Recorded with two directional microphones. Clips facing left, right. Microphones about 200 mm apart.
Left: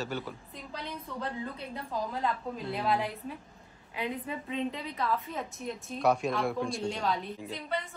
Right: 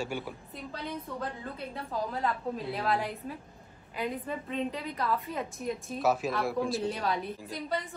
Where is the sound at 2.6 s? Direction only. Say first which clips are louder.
Left 2 dB; centre (ahead or behind).